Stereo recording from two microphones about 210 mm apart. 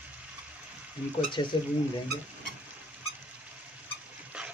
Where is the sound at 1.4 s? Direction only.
20° left (ahead or behind).